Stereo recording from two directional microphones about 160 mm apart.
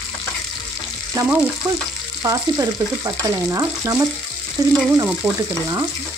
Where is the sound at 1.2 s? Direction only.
20° right (ahead or behind).